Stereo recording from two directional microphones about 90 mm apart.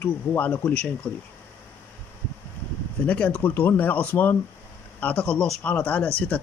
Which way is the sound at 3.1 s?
15° left (ahead or behind).